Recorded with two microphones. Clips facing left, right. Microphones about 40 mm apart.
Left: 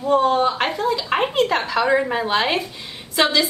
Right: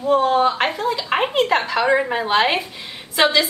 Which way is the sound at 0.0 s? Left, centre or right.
Centre.